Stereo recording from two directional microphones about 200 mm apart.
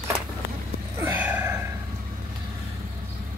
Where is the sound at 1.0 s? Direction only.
10° right (ahead or behind).